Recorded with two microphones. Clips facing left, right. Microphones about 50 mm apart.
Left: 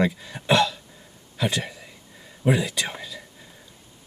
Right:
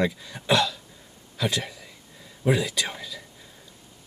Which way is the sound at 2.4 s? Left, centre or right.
Centre.